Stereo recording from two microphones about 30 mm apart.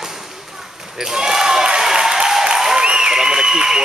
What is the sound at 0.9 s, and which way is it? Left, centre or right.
Speech, right.